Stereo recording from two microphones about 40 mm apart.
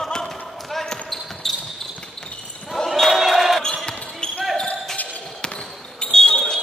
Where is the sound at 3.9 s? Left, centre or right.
Left.